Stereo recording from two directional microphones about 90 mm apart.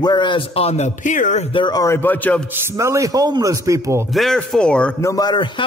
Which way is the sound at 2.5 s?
35° right (ahead or behind).